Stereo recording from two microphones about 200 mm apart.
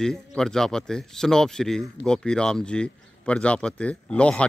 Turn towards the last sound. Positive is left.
turn(degrees=5)  # may be behind; listen again after turning